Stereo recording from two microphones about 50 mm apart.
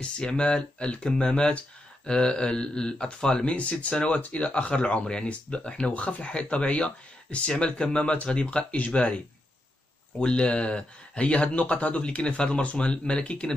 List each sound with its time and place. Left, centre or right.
0.0 s speech: centre